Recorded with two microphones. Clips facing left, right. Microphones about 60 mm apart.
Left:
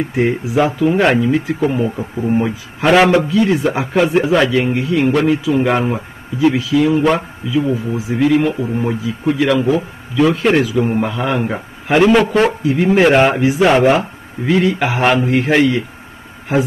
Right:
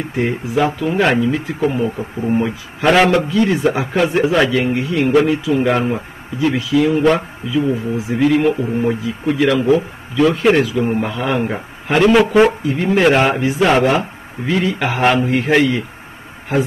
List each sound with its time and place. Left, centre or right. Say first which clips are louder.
0.1 s a man's voice: right 1 dB; centre